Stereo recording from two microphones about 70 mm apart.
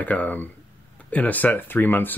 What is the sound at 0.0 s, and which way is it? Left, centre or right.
Speech, left.